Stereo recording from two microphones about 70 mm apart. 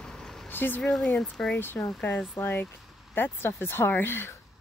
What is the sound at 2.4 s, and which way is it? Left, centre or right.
A woman's voice, left.